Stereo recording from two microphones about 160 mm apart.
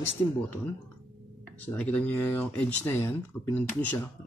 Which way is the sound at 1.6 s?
10° left (ahead or behind).